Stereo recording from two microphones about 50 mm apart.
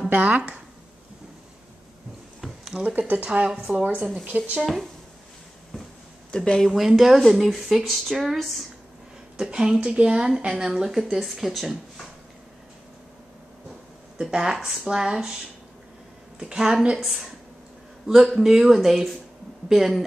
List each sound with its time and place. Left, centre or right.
0.1 s speech: right
2.4 s a sound: centre
3.0 s speech: right
3.4 s a woman's voice: centre
4.6 s speech: centre
6.3 s speech: centre
6.7 s speech: centre
9.4 s a woman's voice: centre
14.3 s a woman's voice: centre
16.3 s a woman's voice: centre
17.0 s a woman's voice: centre